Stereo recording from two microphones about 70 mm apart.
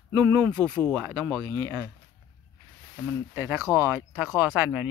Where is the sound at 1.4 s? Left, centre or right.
Right.